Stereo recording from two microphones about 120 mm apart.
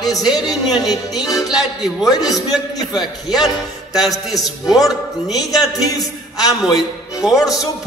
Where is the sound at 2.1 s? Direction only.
35° left (ahead or behind).